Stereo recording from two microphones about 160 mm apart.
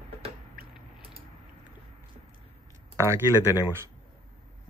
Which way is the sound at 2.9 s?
20° right (ahead or behind).